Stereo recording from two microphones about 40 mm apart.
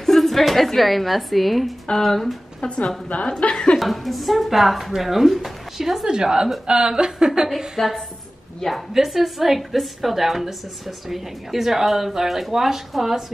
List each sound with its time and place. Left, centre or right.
0.0 s a woman's voice: centre
2.6 s a woman's voice: left
3.7 s a woman's voice: centre
6.0 s a woman's voice: centre
7.4 s a woman's voice: centre